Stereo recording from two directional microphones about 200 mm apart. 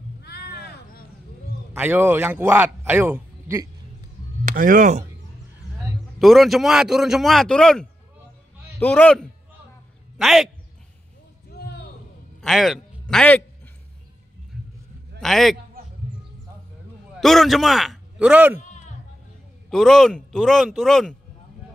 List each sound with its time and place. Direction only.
0.2 s a sound: 50° left (ahead or behind)
1.7 s a man's voice: 10° right (ahead or behind)
4.5 s speech: 45° right (ahead or behind)
6.1 s a man's voice: centre (ahead or behind)
11.5 s a sound: 55° left (ahead or behind)
12.4 s a sound: centre (ahead or behind)
15.1 s a man's voice: centre (ahead or behind)
17.2 s a man's voice: centre (ahead or behind)
18.6 s bleat: 35° left (ahead or behind)
19.7 s a man's voice: centre (ahead or behind)